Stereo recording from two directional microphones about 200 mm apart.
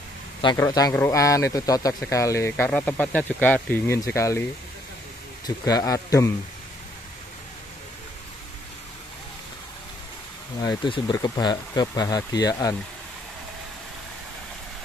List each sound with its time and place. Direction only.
0.6 s speech: 20° left (ahead or behind)
5.7 s speech: 15° left (ahead or behind)
10.6 s speech: 20° left (ahead or behind)